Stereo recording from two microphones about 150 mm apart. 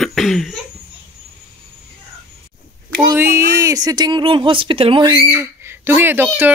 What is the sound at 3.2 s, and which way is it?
Speech, 20° right (ahead or behind).